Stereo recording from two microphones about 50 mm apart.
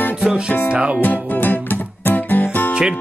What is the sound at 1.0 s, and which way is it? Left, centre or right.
Music, left.